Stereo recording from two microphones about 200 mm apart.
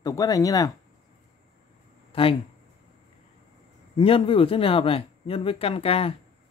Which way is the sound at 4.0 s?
25° left (ahead or behind).